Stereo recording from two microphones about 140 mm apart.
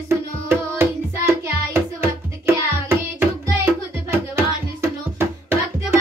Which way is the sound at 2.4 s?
20° right (ahead or behind).